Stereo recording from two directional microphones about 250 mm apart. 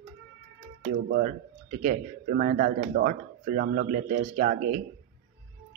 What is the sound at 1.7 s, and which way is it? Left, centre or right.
Speech, right.